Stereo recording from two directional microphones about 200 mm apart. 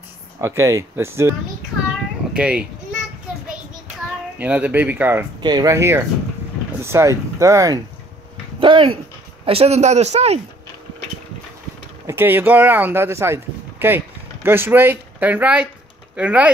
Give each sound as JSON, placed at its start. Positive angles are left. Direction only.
{"t": 0.4, "sound": "speech", "side_deg": -15}
{"t": 2.3, "sound": "speech", "side_deg": -5}
{"t": 4.4, "sound": "speech", "side_deg": -10}
{"t": 5.4, "sound": "a man's voice", "side_deg": -20}
{"t": 12.1, "sound": "speech", "side_deg": -10}